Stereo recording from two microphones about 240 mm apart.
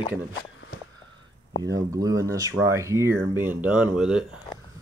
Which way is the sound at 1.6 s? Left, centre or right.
Centre.